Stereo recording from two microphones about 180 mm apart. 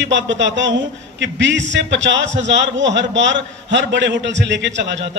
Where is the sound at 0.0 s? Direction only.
90° right.